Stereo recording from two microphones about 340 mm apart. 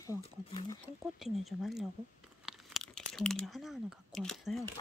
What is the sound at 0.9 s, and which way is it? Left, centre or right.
Speech, centre.